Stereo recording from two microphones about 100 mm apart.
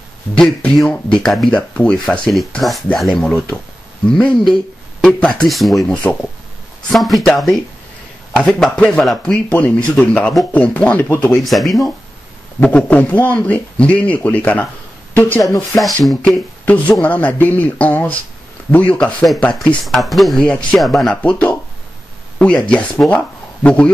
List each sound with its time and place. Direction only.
0.4 s speech: 10° left (ahead or behind)
9.5 s speech: 15° left (ahead or behind)
11.3 s speech: centre (ahead or behind)
12.6 s speech: 10° left (ahead or behind)
15.8 s speech: centre (ahead or behind)
16.6 s speech: 15° left (ahead or behind)
19.8 s speech: centre (ahead or behind)
21.1 s speech: 15° left (ahead or behind)